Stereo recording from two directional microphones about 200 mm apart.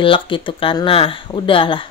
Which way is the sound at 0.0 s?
25° left (ahead or behind).